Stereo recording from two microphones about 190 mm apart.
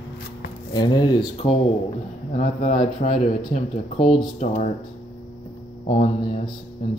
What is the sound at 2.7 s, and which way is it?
Speech, 30° left (ahead or behind).